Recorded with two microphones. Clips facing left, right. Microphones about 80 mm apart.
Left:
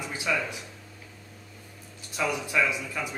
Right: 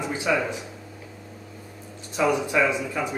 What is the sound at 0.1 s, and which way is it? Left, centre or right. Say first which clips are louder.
Speech: right 5 dB; centre.